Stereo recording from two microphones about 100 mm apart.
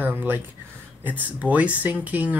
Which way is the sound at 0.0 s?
20° right (ahead or behind).